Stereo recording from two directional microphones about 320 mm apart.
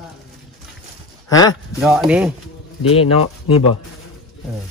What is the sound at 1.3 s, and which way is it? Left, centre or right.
Speech, centre.